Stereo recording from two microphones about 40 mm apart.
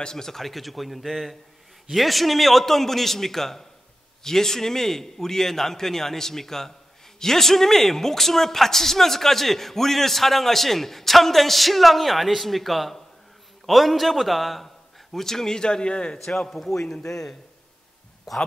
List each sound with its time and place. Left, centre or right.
0.0 s a man's voice: centre
16.3 s a man's voice: centre